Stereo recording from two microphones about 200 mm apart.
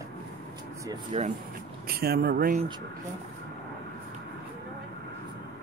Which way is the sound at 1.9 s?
50° right (ahead or behind).